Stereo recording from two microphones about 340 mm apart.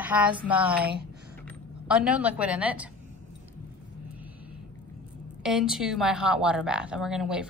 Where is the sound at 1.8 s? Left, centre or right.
Centre.